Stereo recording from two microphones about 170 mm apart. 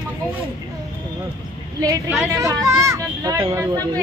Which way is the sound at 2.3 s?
20° right (ahead or behind).